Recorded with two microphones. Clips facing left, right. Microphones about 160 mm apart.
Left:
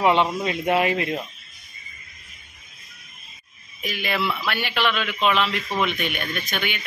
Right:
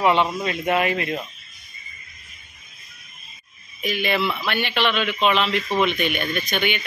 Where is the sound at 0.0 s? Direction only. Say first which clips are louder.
Even; 25° left (ahead or behind).